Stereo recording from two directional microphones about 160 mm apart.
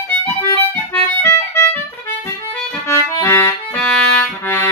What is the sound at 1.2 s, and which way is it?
Music, 20° left (ahead or behind).